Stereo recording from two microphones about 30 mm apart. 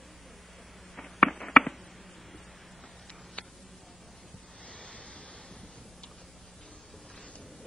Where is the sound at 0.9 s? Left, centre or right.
Centre.